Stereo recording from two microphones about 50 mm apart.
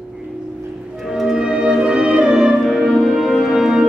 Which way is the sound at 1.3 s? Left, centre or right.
Centre.